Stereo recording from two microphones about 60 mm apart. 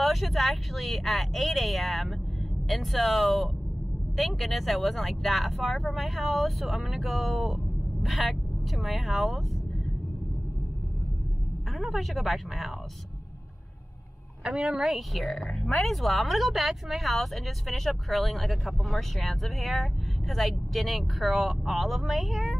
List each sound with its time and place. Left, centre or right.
0.0 s speech: centre
11.7 s speech: centre
14.4 s speech: centre